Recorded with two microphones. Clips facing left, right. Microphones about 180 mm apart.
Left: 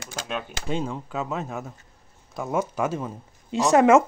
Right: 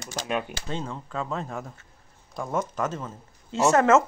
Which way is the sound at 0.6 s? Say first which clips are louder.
Left 5 dB; 10° left (ahead or behind).